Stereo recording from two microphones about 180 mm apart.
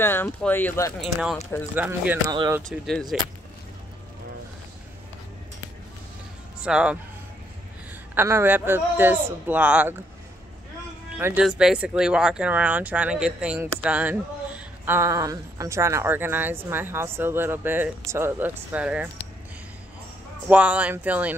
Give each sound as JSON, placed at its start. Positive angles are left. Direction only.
{"t": 0.0, "sound": "speech", "side_deg": 10}
{"t": 1.0, "sound": "a woman's voice", "side_deg": 0}
{"t": 2.2, "sound": "speech", "side_deg": -25}
{"t": 2.6, "sound": "speech", "side_deg": 0}
{"t": 6.6, "sound": "speech", "side_deg": -5}
{"t": 8.1, "sound": "a woman's voice", "side_deg": -10}
{"t": 11.1, "sound": "a woman's voice", "side_deg": -15}
{"t": 20.4, "sound": "a woman's voice", "side_deg": -10}